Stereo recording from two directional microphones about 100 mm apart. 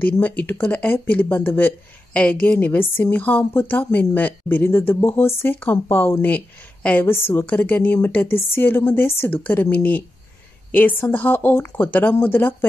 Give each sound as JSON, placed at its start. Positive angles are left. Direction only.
{"t": 0.0, "sound": "a woman's voice", "side_deg": 15}